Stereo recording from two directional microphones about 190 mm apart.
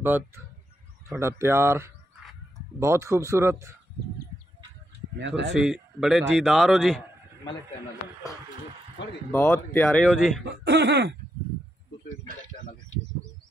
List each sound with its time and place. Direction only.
1.0 s speech: 15° right (ahead or behind)
5.2 s speech: 70° right (ahead or behind)
5.5 s a man's voice: centre (ahead or behind)
9.3 s a man's voice: 10° left (ahead or behind)
10.4 s speech: 65° right (ahead or behind)